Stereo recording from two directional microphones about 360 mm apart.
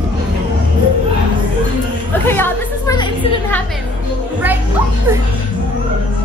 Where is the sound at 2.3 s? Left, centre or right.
Centre.